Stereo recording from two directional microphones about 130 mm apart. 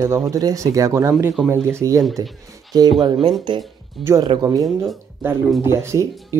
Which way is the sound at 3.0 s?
35° right (ahead or behind).